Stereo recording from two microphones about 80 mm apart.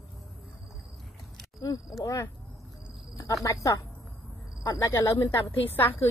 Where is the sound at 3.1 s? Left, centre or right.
Left.